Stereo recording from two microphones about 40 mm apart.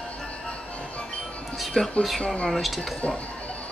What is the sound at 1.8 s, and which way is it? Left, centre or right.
Speech, centre.